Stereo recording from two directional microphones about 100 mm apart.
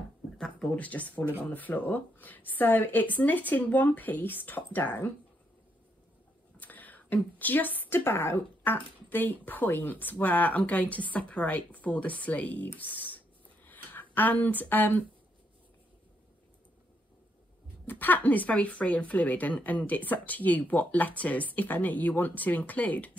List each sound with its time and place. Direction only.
0.4 s speech: 5° left (ahead or behind)
6.6 s a woman's voice: 15° left (ahead or behind)
13.7 s a sound: 20° left (ahead or behind)
17.8 s speech: 20° left (ahead or behind)